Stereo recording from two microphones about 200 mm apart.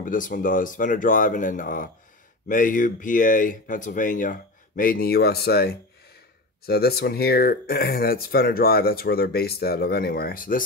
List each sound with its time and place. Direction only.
0.0 s speech: 40° left (ahead or behind)